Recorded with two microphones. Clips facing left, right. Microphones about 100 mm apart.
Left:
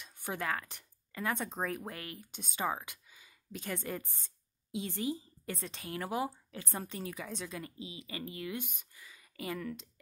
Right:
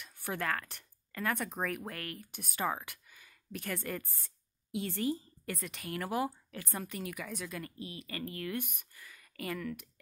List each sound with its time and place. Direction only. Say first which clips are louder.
0.0 s speech: right 1 dB; 20° left (ahead or behind)